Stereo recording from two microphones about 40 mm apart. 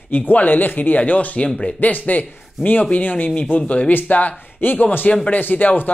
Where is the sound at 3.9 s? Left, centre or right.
Left.